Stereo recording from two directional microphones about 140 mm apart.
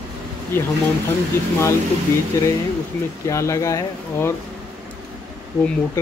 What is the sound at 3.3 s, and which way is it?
Speech, 20° left (ahead or behind).